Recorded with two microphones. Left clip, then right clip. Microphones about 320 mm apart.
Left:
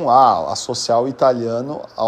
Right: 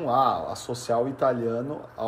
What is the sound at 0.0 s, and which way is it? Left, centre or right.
Speech, centre.